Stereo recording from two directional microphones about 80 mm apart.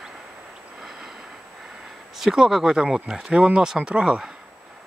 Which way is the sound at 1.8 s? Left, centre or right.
Centre.